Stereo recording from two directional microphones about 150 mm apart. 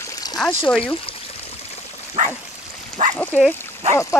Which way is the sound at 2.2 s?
60° right (ahead or behind).